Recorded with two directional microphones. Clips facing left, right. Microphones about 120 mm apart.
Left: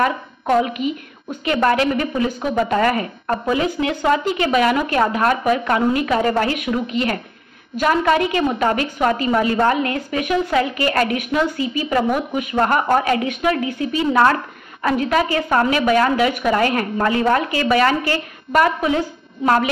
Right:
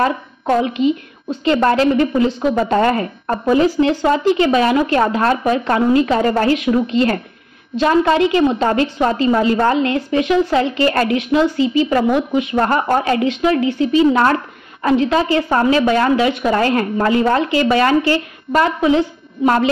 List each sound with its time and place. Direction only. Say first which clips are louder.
0.6 s a woman's voice: right 3 dB; 30° right (ahead or behind)